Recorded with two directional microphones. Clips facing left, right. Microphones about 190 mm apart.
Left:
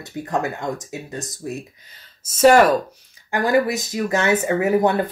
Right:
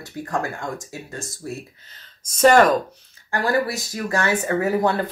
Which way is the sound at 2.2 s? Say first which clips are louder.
Left 1 dB; 5° left (ahead or behind).